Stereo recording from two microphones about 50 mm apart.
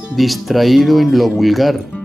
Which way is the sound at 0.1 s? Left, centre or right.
Centre.